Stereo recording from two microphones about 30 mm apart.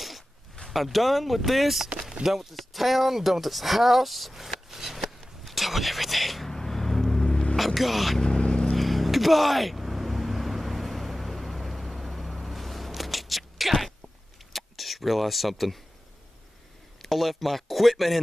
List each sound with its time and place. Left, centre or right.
0.7 s speech: centre
5.4 s a sound: centre
6.5 s vehicle: centre
7.5 s speech: centre
8.2 s vehicle: left
8.7 s vehicle: centre
12.4 s a sound: centre
14.5 s speech: centre
17.0 s speech: centre